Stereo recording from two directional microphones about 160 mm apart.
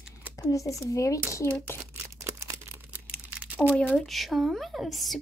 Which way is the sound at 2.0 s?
20° right (ahead or behind).